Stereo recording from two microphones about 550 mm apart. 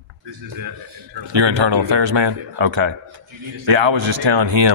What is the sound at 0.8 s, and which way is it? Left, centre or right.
Speech, right.